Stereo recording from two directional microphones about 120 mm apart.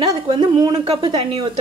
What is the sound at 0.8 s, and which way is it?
Speech, 45° right (ahead or behind).